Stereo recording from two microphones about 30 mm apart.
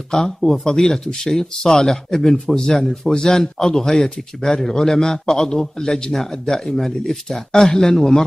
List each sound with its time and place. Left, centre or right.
0.2 s a man's voice: centre